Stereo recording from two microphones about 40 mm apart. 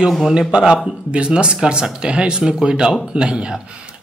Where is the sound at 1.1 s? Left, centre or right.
Right.